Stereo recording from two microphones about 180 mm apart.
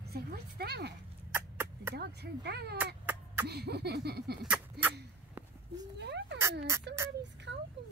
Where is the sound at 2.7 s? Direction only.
10° right (ahead or behind).